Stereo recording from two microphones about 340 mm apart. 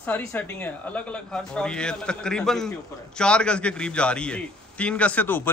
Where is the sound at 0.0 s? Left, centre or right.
Centre.